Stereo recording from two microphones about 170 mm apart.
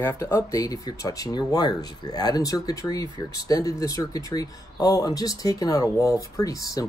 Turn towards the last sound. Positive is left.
turn(degrees=20)  # may be behind; listen again after turning